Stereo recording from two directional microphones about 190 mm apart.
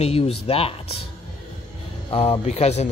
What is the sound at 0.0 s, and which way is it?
Speech, 30° left (ahead or behind).